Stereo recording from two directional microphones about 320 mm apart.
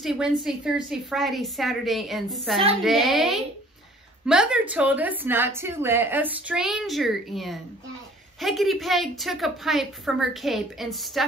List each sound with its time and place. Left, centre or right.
0.0 s a woman's voice: centre